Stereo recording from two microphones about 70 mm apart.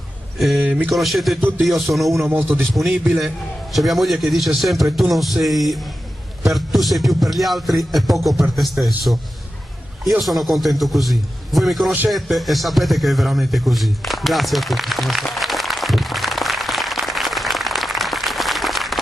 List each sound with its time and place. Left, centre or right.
0.4 s a sound: centre
0.8 s music: centre
2.2 s a man's voice: right
3.7 s music: centre
10.2 s music: centre
12.1 s a sound: centre